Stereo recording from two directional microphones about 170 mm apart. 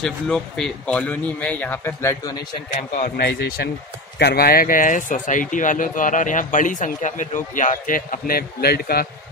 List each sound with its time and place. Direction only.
0.0 s speech: centre (ahead or behind)
2.9 s speech: 50° left (ahead or behind)
3.3 s speech: 70° left (ahead or behind)